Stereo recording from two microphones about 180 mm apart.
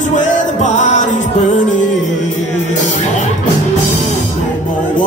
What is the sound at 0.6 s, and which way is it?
Music, 40° left (ahead or behind).